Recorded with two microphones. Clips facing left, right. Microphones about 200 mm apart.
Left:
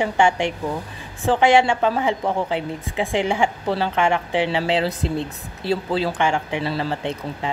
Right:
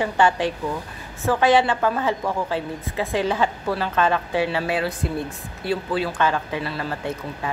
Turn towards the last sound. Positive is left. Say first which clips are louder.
# left 2 dB
turn(degrees=25)  # may be behind; listen again after turning